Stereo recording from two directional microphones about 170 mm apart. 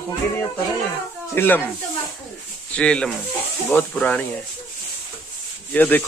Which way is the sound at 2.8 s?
5° left (ahead or behind).